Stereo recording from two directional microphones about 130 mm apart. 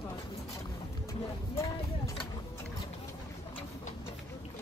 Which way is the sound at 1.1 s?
25° left (ahead or behind).